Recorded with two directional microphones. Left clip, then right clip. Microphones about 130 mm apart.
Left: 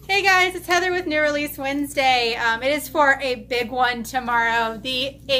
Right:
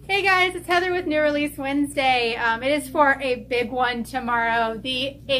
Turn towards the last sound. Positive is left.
turn(degrees=25)  # may be behind; listen again after turning